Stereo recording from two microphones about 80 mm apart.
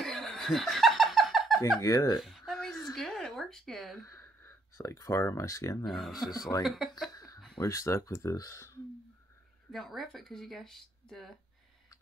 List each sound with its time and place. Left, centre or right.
0.0 s snicker: centre
1.8 s speech: left
2.1 s a sound: centre
2.7 s a sound: left
3.0 s a sound: centre
4.1 s speech: left
5.9 s speech: centre
7.6 s speech: left
9.7 s speech: centre